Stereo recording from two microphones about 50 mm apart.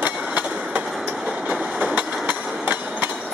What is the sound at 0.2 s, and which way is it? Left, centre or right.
Train, right.